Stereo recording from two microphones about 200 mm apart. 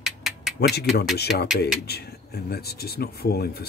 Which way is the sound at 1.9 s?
55° left (ahead or behind).